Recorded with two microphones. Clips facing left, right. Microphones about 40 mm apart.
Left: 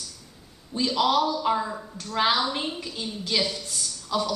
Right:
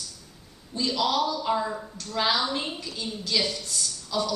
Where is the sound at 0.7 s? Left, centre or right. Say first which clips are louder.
Left 3 dB; centre.